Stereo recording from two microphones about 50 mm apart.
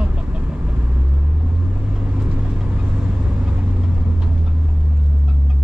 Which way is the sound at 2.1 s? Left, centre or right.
Centre.